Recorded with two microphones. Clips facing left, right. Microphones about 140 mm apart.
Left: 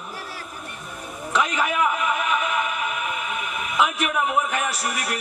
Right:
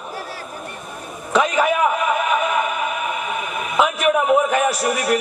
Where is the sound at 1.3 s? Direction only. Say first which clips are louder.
Right 6 dB; 35° right (ahead or behind).